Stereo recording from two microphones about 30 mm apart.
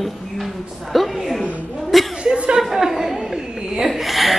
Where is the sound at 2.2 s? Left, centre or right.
Right.